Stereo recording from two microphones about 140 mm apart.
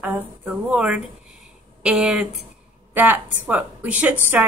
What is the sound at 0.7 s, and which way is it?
A woman's voice, 10° right (ahead or behind).